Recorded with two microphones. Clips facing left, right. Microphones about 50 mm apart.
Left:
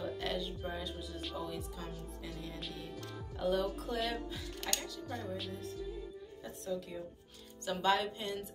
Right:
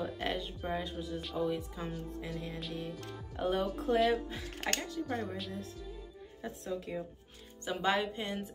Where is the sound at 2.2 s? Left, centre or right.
Centre.